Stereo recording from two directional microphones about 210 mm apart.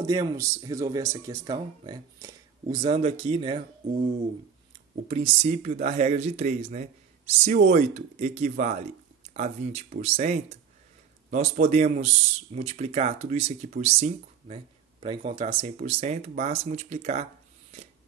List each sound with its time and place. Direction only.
0.0 s speech: 15° right (ahead or behind)
5.0 s speech: 30° right (ahead or behind)